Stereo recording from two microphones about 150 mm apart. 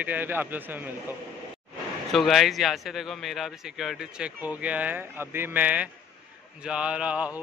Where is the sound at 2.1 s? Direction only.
Centre (ahead or behind).